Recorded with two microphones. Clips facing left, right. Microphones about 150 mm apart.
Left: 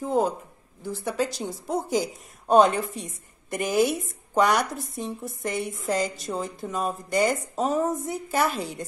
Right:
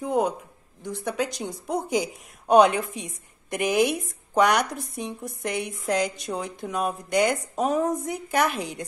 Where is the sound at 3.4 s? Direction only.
Centre (ahead or behind).